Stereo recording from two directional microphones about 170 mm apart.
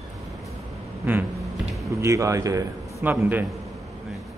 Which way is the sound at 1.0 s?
10° right (ahead or behind).